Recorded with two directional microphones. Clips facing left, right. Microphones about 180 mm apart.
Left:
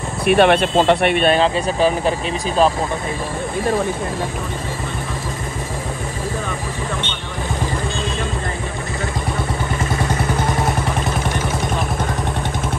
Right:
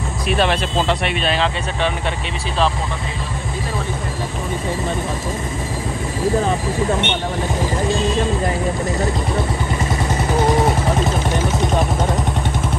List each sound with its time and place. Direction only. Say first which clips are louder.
0.3 s speech: left 6 dB; 60° left (ahead or behind)
1.4 s speech: left 4 dB; 35° left (ahead or behind)